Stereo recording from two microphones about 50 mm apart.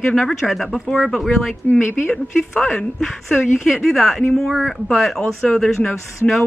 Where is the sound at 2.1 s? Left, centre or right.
Centre.